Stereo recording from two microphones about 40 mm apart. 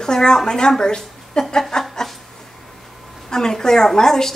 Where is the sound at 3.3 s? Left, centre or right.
Centre.